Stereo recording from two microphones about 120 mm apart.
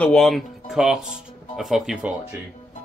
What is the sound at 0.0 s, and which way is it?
Speech, 5° left (ahead or behind).